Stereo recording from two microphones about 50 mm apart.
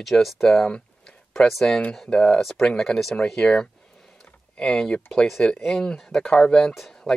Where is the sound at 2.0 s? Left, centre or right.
Centre.